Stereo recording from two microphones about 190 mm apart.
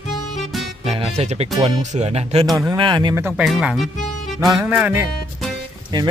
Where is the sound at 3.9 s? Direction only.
40° left (ahead or behind).